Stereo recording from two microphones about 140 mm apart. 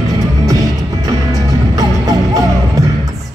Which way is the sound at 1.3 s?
25° right (ahead or behind).